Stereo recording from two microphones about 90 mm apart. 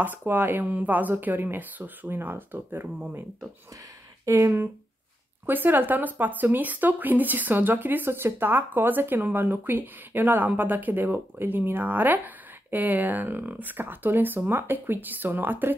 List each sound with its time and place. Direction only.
0.0 s speech: 20° right (ahead or behind)
4.3 s speech: 30° right (ahead or behind)